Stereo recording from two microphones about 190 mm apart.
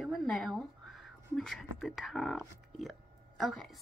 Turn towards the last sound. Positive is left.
turn(degrees=0)  # may be behind; listen again after turning